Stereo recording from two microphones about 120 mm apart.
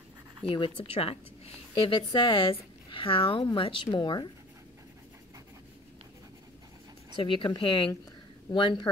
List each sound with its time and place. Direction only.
0.9 s speech: 55° left (ahead or behind); by 4.3 s 40° left (ahead or behind)
7.2 s speech: 45° left (ahead or behind)